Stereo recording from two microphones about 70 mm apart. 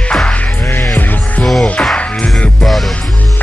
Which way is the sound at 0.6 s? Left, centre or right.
Left.